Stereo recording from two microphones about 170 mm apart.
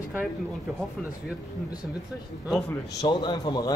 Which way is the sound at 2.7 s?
25° left (ahead or behind).